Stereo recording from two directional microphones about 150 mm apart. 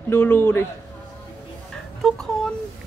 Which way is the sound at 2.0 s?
5° left (ahead or behind).